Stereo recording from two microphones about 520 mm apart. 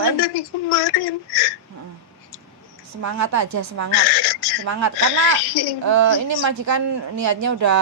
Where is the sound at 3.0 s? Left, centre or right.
Right.